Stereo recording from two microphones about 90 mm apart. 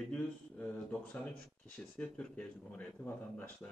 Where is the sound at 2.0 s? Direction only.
15° left (ahead or behind).